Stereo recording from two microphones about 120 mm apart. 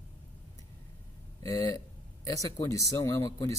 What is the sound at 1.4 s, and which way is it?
Speech, 30° left (ahead or behind).